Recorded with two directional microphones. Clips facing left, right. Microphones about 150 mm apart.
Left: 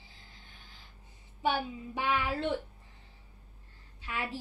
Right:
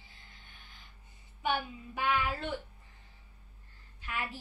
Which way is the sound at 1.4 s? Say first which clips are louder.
Left 2 dB; 30° left (ahead or behind).